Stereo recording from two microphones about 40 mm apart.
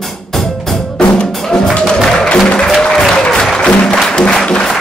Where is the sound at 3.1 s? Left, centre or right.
Centre.